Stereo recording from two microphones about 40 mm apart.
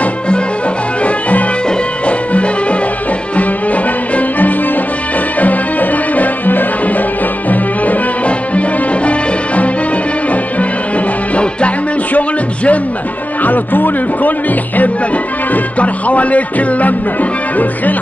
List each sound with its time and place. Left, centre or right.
2.0 s music: left
8.3 s music: left
12.1 s music: left
13.4 s music: left
15.5 s music: left